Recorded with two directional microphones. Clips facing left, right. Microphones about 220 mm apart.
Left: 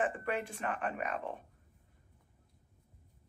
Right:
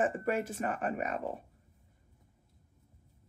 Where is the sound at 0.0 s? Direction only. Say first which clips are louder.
Right 4 dB; 45° right (ahead or behind).